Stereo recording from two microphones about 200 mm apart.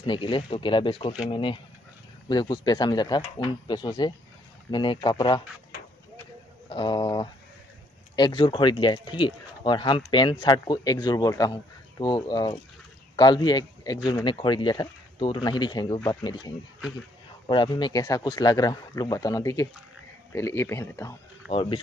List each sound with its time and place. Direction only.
0.0 s speech: 25° left (ahead or behind)
6.7 s speech: 25° left (ahead or behind)
21.5 s speech: 25° left (ahead or behind)